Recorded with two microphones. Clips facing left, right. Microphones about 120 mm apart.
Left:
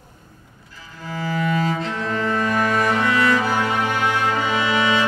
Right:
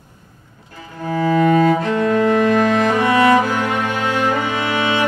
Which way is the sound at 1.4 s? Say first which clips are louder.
Right 7 dB; 55° right (ahead or behind).